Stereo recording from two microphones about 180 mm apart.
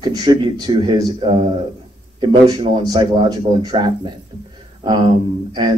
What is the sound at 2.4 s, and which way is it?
Speech, 20° right (ahead or behind).